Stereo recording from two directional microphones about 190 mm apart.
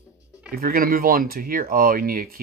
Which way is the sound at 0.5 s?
50° right (ahead or behind).